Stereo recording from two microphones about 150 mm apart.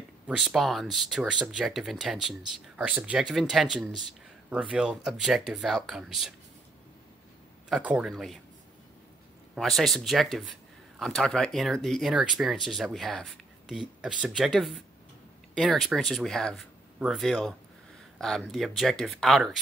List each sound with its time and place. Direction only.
0.3 s speech: 5° right (ahead or behind)
7.7 s speech: 5° right (ahead or behind)
9.6 s speech: centre (ahead or behind)